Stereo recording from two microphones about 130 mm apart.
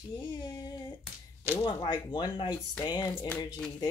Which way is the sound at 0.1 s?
35° left (ahead or behind).